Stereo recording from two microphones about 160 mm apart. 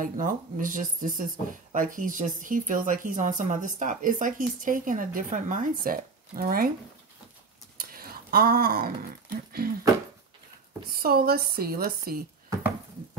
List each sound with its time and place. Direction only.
0.0 s speech: 55° right (ahead or behind)
7.7 s a sound: 65° right (ahead or behind)
10.9 s a woman's voice: 70° right (ahead or behind)